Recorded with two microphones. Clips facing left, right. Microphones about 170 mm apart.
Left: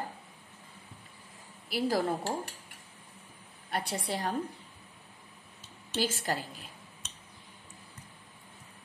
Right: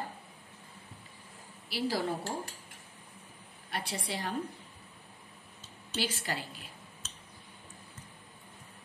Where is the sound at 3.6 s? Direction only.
50° left (ahead or behind).